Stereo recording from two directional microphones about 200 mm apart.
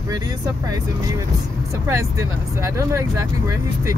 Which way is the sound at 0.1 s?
20° right (ahead or behind).